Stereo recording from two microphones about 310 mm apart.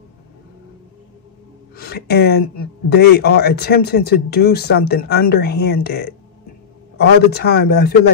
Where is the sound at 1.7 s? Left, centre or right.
Left.